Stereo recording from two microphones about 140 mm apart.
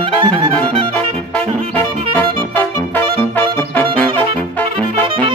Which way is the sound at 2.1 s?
15° left (ahead or behind).